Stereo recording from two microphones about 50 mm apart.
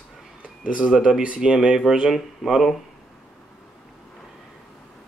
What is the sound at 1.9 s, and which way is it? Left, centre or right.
Speech, centre.